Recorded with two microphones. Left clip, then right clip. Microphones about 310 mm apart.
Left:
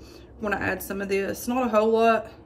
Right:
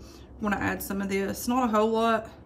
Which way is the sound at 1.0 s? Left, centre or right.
Right.